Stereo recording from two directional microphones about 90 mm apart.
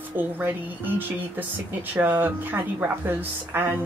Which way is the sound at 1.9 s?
20° right (ahead or behind).